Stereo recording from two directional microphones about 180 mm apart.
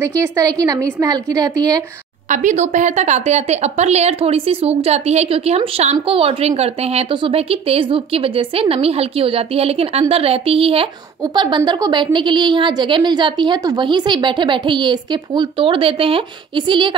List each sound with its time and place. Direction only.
0.2 s a woman's voice: 20° right (ahead or behind)
2.2 s a woman's voice: 45° right (ahead or behind); by 16.9 s 25° right (ahead or behind)